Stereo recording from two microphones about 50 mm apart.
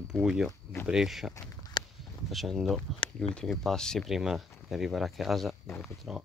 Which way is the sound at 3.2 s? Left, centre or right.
Centre.